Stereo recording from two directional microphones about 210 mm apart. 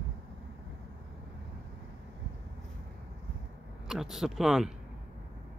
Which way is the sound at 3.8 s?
Centre (ahead or behind).